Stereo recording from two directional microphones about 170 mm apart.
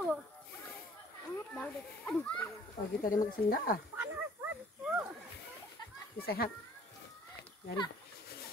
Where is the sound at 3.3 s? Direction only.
60° left (ahead or behind).